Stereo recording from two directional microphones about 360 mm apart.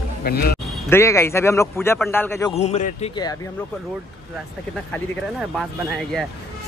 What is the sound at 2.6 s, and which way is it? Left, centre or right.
Speech, centre.